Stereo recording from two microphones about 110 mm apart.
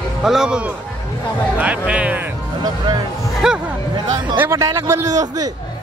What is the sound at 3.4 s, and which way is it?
Speech, 5° right (ahead or behind).